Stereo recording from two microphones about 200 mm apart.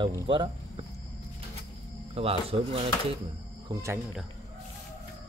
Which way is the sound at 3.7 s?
20° right (ahead or behind).